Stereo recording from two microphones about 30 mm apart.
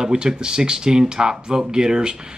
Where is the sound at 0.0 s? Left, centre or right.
Right.